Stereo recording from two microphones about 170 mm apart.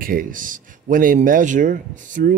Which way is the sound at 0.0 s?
55° right (ahead or behind).